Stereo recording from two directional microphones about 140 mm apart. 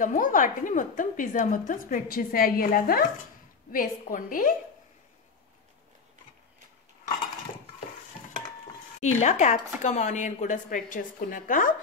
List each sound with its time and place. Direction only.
0.0 s a woman's voice: 70° left (ahead or behind)
9.0 s a woman's voice: 55° left (ahead or behind); by 11.7 s 75° left (ahead or behind)